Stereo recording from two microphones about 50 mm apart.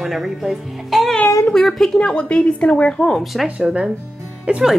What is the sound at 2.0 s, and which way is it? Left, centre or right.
Speech, left.